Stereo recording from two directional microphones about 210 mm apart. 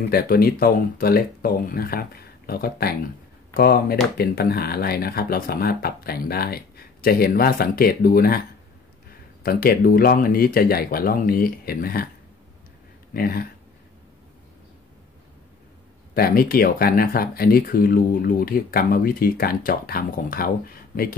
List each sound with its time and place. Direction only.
0.1 s speech: 45° left (ahead or behind)
9.4 s speech: 45° left (ahead or behind)
13.1 s speech: 45° left (ahead or behind)
16.2 s speech: 45° left (ahead or behind)